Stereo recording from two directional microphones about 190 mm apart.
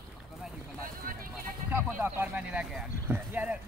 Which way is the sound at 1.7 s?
10° right (ahead or behind).